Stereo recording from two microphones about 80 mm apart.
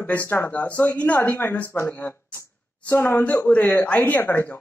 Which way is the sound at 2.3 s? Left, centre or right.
Left.